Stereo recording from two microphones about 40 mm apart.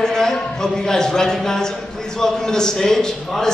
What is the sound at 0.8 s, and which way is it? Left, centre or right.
A man's voice, centre.